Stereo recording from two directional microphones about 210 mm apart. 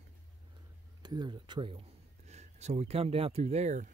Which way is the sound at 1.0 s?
20° right (ahead or behind).